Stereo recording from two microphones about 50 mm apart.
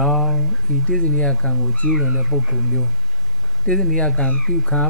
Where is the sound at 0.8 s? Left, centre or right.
Centre.